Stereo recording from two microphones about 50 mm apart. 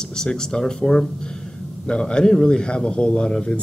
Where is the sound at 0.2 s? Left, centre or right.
Centre.